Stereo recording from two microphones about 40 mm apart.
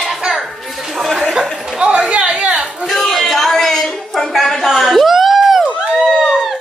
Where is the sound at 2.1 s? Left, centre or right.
Right.